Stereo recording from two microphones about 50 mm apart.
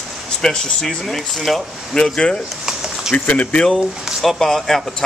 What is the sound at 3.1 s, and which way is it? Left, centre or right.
Speech, left.